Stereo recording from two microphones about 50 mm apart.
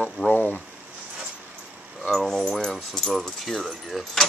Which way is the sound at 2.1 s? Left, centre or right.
Centre.